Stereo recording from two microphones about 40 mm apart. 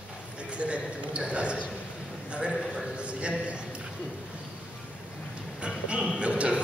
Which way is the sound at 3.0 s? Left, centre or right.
Right.